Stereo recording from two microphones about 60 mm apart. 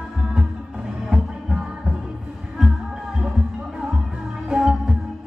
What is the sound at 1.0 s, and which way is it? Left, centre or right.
Music, centre.